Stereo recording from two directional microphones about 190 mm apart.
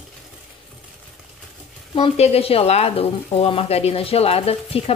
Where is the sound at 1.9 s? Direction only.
30° left (ahead or behind).